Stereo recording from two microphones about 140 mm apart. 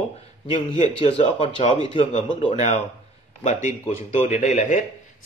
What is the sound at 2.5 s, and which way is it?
Speech, 55° left (ahead or behind).